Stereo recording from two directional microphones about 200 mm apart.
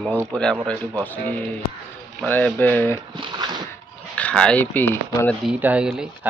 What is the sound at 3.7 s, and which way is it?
Speech, 5° left (ahead or behind).